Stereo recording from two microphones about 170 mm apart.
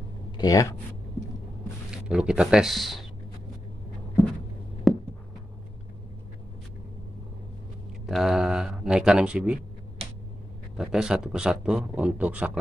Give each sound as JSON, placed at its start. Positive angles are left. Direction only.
{"t": 0.4, "sound": "speech", "side_deg": 20}
{"t": 1.9, "sound": "speech", "side_deg": -5}
{"t": 4.9, "sound": "a sound", "side_deg": 0}
{"t": 8.1, "sound": "speech", "side_deg": 0}
{"t": 10.8, "sound": "a man's voice", "side_deg": -5}